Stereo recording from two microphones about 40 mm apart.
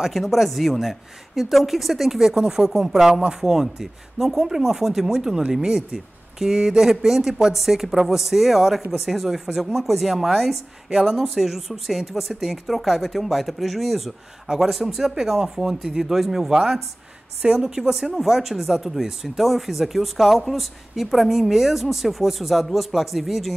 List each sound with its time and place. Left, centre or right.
0.0 s speech: centre
10.9 s speech: centre
11.1 s speech: centre